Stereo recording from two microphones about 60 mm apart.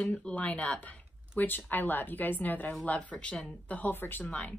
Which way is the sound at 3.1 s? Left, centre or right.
Centre.